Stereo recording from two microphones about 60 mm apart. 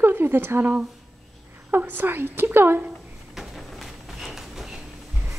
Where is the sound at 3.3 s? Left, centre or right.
Centre.